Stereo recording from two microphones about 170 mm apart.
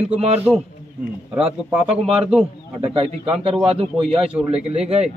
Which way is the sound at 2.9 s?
35° right (ahead or behind).